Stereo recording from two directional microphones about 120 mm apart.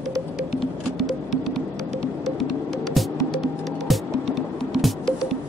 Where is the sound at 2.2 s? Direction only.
Centre (ahead or behind).